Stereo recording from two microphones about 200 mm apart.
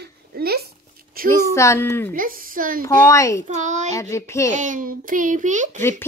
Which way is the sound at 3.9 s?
15° left (ahead or behind).